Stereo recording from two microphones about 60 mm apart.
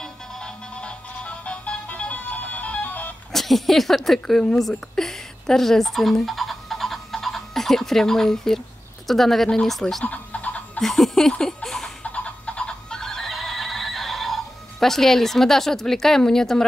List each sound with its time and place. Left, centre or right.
0.0 s music: centre
3.3 s speech: centre
4.5 s fowl: centre
9.0 s speech: centre
10.0 s a sound: left
10.8 s laughter: centre
12.0 s neigh: centre